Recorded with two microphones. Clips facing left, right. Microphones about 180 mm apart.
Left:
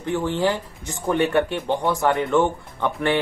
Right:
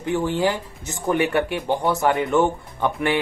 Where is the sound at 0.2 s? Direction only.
10° right (ahead or behind).